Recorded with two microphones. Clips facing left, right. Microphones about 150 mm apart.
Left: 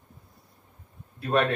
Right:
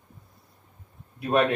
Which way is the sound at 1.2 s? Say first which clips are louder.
Right 2 dB; 15° right (ahead or behind).